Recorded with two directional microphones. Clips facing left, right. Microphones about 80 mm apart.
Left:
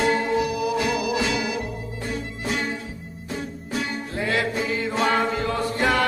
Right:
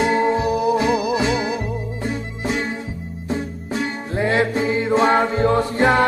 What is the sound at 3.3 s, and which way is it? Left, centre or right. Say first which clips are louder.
Music: right 6 dB; right.